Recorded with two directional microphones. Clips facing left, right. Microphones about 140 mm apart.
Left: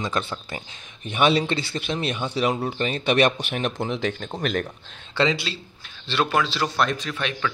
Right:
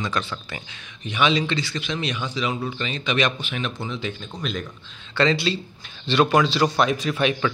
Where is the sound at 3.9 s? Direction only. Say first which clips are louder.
Left 4 dB; 65° left (ahead or behind).